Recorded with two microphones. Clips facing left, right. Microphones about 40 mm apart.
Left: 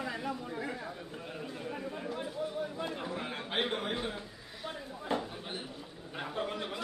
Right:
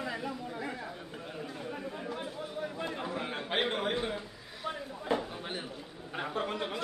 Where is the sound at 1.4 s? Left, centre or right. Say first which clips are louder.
Even; centre.